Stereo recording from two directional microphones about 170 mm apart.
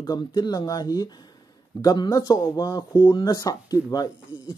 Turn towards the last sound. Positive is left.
turn(degrees=25)  # may be behind; listen again after turning